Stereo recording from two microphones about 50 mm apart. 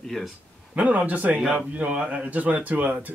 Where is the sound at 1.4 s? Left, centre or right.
Centre.